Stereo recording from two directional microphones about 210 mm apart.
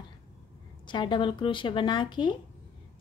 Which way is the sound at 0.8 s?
20° left (ahead or behind).